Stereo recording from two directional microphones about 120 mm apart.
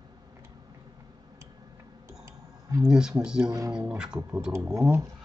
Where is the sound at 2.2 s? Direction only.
25° right (ahead or behind).